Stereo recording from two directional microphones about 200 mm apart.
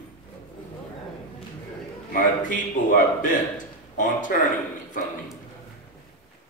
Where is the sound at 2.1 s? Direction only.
40° left (ahead or behind).